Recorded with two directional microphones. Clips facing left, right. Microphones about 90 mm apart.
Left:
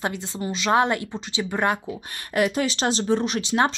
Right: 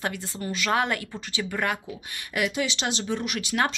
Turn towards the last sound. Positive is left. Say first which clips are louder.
# left 4 dB
turn(degrees=25)  # may be behind; listen again after turning